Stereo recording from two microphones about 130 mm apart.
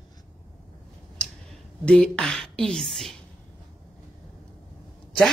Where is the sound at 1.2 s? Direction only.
5° left (ahead or behind).